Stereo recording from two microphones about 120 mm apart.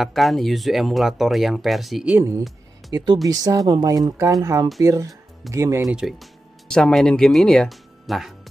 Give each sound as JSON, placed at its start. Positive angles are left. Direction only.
{"t": 0.0, "sound": "speech", "side_deg": 0}
{"t": 2.1, "sound": "speech", "side_deg": -25}
{"t": 5.9, "sound": "speech", "side_deg": -5}